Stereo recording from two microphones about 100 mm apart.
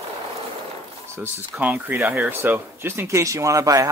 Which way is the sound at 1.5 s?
15° right (ahead or behind).